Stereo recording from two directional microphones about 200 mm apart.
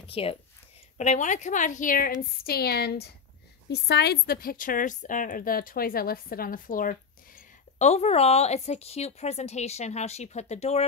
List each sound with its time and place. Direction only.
0.0 s a woman's voice: 30° left (ahead or behind)